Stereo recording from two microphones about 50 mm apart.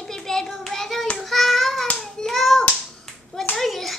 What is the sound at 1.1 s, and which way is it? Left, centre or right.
Child singing, centre.